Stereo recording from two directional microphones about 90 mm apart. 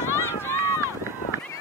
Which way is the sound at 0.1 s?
30° left (ahead or behind).